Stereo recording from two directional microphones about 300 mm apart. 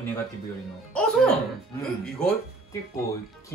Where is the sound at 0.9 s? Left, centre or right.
Centre.